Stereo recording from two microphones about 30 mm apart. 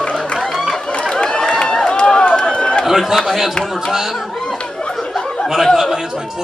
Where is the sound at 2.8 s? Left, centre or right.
Centre.